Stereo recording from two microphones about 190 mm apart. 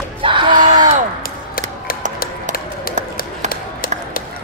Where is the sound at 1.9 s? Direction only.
50° left (ahead or behind).